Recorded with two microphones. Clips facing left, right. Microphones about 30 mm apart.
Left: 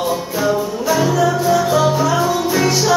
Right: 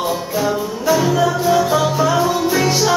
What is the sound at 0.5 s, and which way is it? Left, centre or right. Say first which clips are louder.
Music: left 1 dB; centre.